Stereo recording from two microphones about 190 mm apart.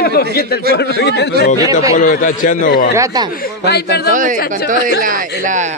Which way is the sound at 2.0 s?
45° left (ahead or behind).